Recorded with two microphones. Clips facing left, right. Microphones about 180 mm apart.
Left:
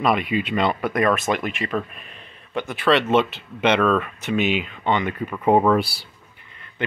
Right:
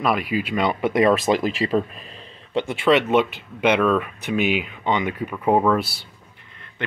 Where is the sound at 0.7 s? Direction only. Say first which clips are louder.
Right 3 dB; 25° right (ahead or behind).